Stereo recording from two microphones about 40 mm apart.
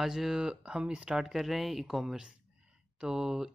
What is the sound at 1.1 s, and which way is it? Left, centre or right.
Speech, centre.